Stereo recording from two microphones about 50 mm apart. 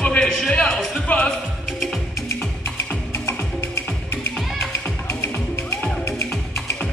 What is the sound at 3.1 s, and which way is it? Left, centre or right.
Music, left.